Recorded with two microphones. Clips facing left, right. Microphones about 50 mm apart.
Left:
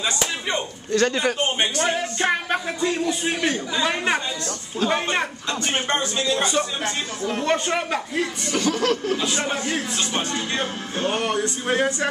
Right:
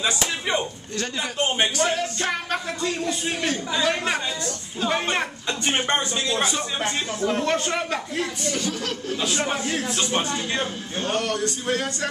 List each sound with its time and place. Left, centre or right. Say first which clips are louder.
0.0 s slap: even; centre
0.9 s a man's voice: left 9 dB; left
1.9 s a man's voice: left 3 dB; left
5.7 s speech: right 1 dB; centre
7.3 s a man's voice: left 5 dB; centre
8.5 s speech: left 11 dB; left
9.2 s a man's voice: even; centre
11.1 s speech: left 1 dB; left